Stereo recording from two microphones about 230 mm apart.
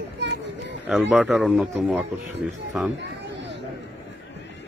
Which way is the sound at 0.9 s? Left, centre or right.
Centre.